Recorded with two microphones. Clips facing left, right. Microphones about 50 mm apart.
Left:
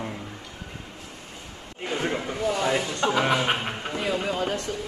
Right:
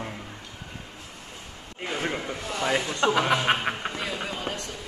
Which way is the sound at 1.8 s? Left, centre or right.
Centre.